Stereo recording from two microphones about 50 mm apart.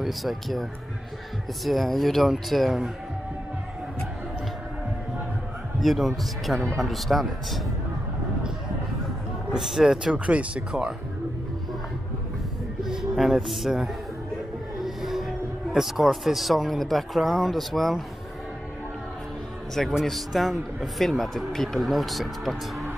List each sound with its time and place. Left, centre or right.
0.0 s a man's voice: centre
5.8 s a man's voice: centre
9.6 s speech: centre
10.1 s speech: right
12.8 s a man's voice: centre
14.8 s a sound: centre
16.3 s a man's voice: centre
19.7 s a man's voice: centre